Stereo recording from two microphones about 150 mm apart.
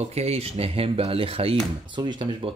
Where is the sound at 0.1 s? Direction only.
45° right (ahead or behind).